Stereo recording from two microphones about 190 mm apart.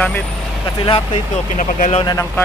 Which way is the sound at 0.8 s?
25° left (ahead or behind).